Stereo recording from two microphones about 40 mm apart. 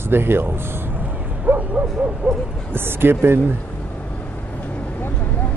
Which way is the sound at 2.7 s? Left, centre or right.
Right.